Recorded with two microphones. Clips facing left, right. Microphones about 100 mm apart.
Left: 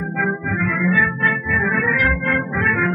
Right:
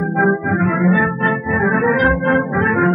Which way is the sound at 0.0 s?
35° right (ahead or behind).